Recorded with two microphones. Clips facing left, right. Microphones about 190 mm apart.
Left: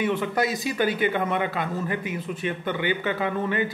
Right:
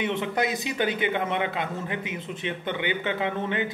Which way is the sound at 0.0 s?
20° right (ahead or behind).